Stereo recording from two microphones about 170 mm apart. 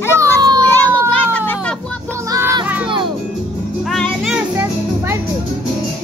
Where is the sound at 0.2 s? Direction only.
25° right (ahead or behind).